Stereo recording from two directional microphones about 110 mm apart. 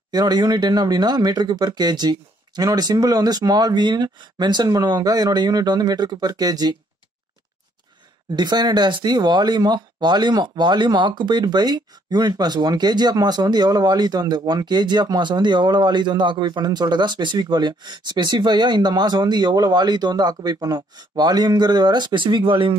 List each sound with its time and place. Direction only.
0.1 s speech: 35° right (ahead or behind)
8.4 s speech: 40° right (ahead or behind)